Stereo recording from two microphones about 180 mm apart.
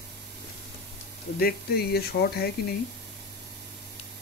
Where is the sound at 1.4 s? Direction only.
60° left (ahead or behind).